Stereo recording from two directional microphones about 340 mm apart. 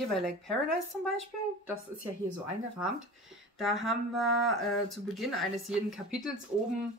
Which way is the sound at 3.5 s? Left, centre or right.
Centre.